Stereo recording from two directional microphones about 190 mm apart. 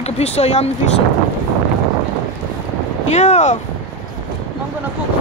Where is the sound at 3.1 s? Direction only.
35° left (ahead or behind).